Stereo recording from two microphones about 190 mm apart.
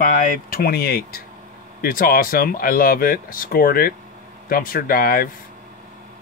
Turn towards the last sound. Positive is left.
turn(degrees=50)  # may be behind; listen again after turning